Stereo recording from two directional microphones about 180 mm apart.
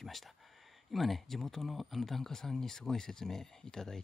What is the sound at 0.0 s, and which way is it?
Speech, centre (ahead or behind).